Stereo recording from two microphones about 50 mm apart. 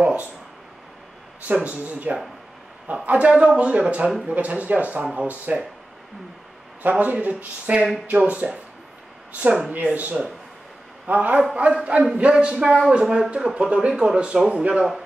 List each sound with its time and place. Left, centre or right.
1.5 s speech: right
6.8 s speech: right
9.7 s speech: right
11.5 s speech: right